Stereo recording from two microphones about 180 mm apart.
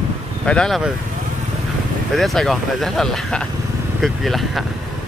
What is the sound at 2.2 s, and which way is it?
Speech, centre (ahead or behind).